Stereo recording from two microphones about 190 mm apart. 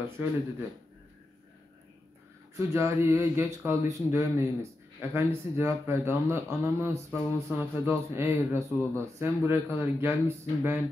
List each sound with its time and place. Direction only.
2.5 s a man's voice: 15° right (ahead or behind)